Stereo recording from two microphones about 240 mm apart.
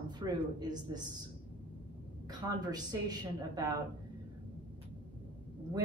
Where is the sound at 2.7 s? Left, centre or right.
Centre.